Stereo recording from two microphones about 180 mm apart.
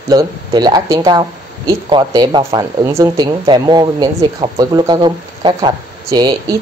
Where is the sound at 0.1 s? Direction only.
20° right (ahead or behind).